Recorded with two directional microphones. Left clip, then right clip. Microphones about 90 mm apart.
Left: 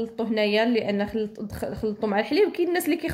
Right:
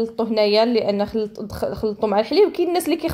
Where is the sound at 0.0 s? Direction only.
25° right (ahead or behind).